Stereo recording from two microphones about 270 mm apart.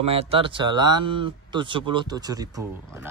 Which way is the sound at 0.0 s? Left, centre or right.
Right.